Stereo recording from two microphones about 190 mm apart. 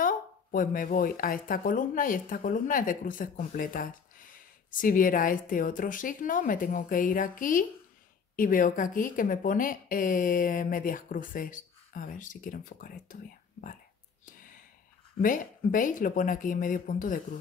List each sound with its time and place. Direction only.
0.0 s a woman's voice: 45° left (ahead or behind)
14.2 s sigh: 45° left (ahead or behind)
15.2 s a woman's voice: 45° left (ahead or behind)